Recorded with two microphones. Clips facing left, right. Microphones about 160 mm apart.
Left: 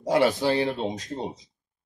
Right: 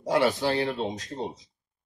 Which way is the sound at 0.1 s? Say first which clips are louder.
Left 2 dB; 20° left (ahead or behind).